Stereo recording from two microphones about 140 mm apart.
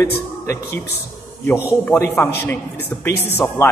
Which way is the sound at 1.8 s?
20° left (ahead or behind).